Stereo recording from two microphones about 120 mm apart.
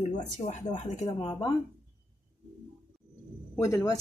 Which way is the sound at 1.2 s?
35° left (ahead or behind).